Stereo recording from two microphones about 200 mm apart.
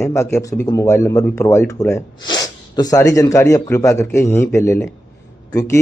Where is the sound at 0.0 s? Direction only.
15° left (ahead or behind).